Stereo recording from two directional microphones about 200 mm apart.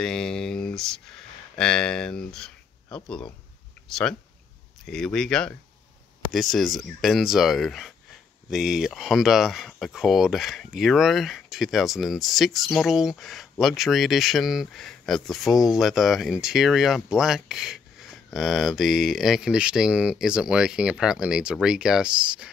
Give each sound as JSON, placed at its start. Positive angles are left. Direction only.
{"t": 0.0, "sound": "a sound", "side_deg": 5}
{"t": 1.6, "sound": "speech", "side_deg": 5}
{"t": 4.8, "sound": "speech", "side_deg": 5}